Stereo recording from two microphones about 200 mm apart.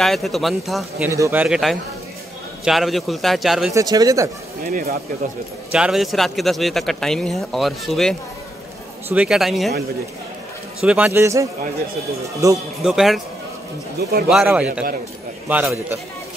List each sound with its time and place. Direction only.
0.0 s a man's voice: centre (ahead or behind)
1.1 s a man's voice: 10° right (ahead or behind)
3.7 s speech: 20° right (ahead or behind)
4.6 s speech: 40° right (ahead or behind)
5.7 s a man's voice: 5° right (ahead or behind)
10.8 s speech: 5° right (ahead or behind)
12.8 s a man's voice: centre (ahead or behind)
14.3 s a man's voice: 5° right (ahead or behind)